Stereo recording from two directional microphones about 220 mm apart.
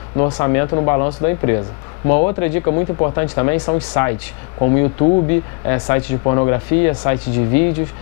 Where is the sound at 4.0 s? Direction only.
10° left (ahead or behind).